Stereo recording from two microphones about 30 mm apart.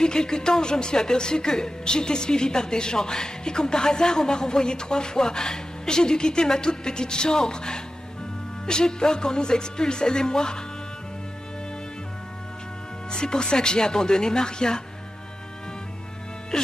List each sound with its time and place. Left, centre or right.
0.0 s speech: left
13.1 s speech: left